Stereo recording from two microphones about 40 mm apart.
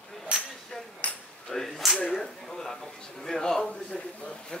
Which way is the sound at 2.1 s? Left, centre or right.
Centre.